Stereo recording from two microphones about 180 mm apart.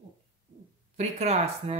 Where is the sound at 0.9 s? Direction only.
40° right (ahead or behind).